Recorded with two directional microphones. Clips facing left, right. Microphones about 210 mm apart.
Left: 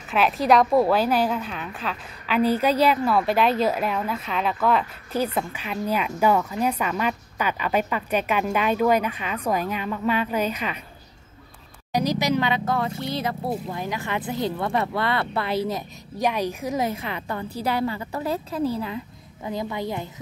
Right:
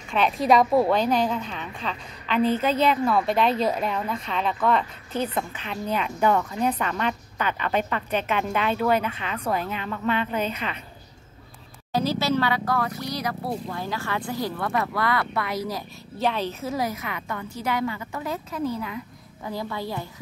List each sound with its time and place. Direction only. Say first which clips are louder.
0.1 s a woman's voice: left 1 dB; centre (ahead or behind)
11.9 s speech: left 1 dB; 15° left (ahead or behind)
16.2 s a woman's voice: left 1 dB; 15° left (ahead or behind); by 18.9 s 30° left (ahead or behind)
19.4 s speech: left 2 dB; 20° left (ahead or behind)